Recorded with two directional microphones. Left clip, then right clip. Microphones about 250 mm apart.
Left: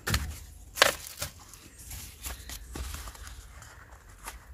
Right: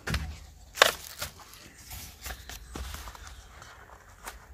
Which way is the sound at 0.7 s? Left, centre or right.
Right.